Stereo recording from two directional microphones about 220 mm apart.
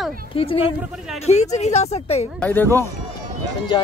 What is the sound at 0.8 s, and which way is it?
Speech, 5° right (ahead or behind).